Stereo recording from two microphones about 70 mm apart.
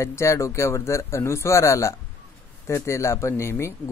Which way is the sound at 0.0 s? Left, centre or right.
Left.